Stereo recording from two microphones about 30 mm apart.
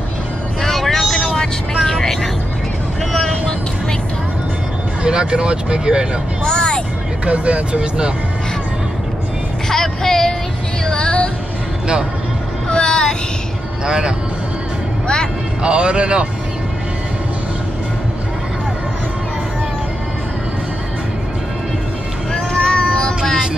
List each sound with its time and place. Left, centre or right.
0.6 s vehicle: centre
3.1 s vehicle: centre
5.0 s speech: right
6.4 s music: left
7.2 s speech: right
9.7 s vehicle: centre
10.9 s a sound: left
12.6 s vehicle: left
13.8 s a man's voice: right
15.6 s speech: right
22.3 s vehicle: left